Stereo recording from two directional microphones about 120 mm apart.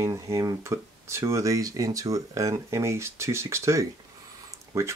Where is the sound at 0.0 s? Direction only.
25° right (ahead or behind).